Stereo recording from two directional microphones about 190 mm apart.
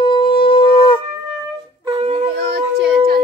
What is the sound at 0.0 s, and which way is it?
Shofar, 25° left (ahead or behind).